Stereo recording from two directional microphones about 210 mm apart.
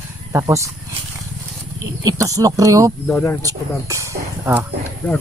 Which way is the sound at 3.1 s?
10° left (ahead or behind).